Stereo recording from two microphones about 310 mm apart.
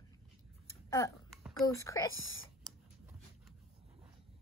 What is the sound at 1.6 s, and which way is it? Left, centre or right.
Speech, centre.